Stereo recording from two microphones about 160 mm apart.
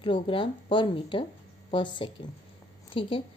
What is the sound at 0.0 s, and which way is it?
A woman's voice, 30° left (ahead or behind).